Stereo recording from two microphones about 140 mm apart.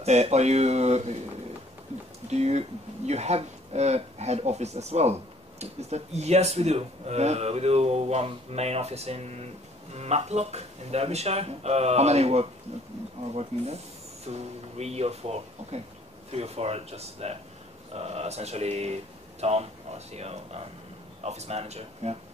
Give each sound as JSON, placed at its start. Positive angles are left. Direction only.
{"t": 0.0, "sound": "speech", "side_deg": -50}
{"t": 2.2, "sound": "speech", "side_deg": -50}